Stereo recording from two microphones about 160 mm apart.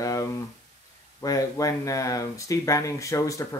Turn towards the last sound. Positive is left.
turn(degrees=20)  # may be behind; listen again after turning